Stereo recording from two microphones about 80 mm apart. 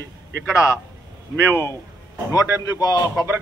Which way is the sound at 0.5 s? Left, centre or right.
Left.